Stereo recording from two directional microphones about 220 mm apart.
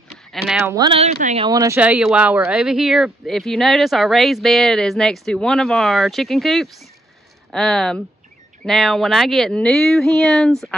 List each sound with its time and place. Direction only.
0.1 s a sound: centre (ahead or behind)
0.7 s speech: 20° right (ahead or behind)
1.5 s speech: 15° right (ahead or behind); by 10.8 s centre (ahead or behind)